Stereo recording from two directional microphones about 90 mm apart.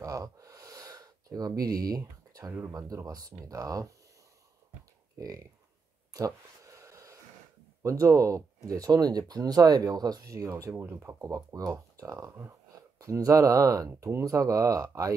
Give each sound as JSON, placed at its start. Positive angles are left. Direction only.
{"t": 0.0, "sound": "gasp", "side_deg": -40}
{"t": 3.1, "sound": "speech", "side_deg": -40}
{"t": 6.1, "sound": "a sound", "side_deg": -40}
{"t": 7.8, "sound": "speech", "side_deg": -35}